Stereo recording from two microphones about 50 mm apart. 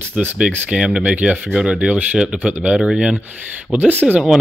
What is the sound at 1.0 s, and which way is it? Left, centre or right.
Speech, right.